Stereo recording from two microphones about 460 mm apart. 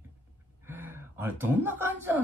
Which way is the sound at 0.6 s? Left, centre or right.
Centre.